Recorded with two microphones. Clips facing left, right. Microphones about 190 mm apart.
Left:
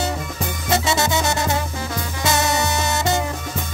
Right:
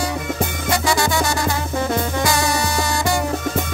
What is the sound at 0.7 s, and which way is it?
Music, 20° left (ahead or behind).